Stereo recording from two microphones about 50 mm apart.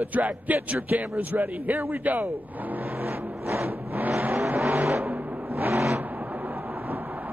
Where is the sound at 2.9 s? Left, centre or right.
Right.